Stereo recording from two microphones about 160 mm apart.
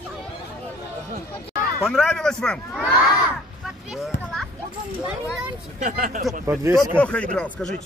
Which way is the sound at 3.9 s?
Centre (ahead or behind).